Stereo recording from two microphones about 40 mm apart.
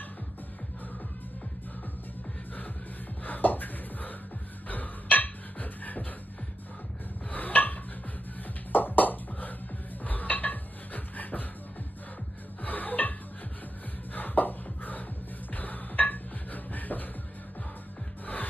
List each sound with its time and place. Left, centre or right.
3.3 s a sound: left
4.6 s music: left
7.2 s a sound: left
8.7 s music: left
12.6 s music: left
14.1 s music: left
18.2 s music: left